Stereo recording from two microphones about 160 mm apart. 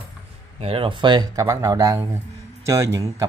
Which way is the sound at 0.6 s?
35° right (ahead or behind).